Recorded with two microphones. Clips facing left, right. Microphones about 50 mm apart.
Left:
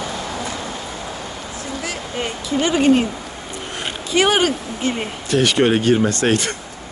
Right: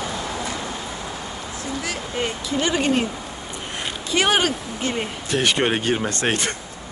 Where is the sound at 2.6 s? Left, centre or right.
Centre.